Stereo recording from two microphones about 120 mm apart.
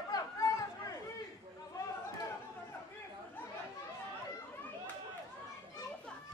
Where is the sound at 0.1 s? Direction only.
30° left (ahead or behind).